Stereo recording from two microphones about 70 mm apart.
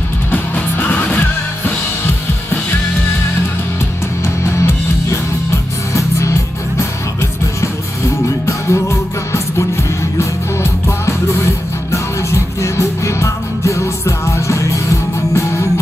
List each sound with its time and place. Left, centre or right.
0.3 s music: left
4.6 s music: left
8.5 s music: left